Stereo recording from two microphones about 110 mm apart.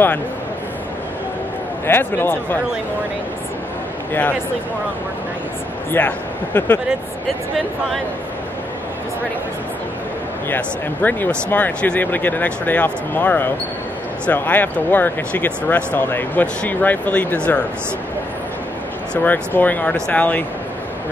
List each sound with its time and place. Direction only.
1.9 s speech: 20° left (ahead or behind)
5.9 s speech: 15° left (ahead or behind)
10.5 s speech: 15° left (ahead or behind)
19.2 s speech: 15° left (ahead or behind)